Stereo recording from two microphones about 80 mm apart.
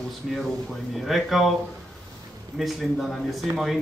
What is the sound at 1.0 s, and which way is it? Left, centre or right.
Speech, centre.